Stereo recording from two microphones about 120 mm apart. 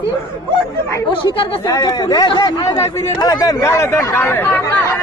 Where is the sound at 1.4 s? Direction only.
45° left (ahead or behind).